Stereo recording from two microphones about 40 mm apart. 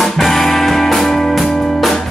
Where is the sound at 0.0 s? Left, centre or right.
Centre.